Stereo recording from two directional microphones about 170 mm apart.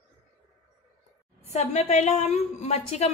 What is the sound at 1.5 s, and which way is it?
A woman's voice, 40° left (ahead or behind).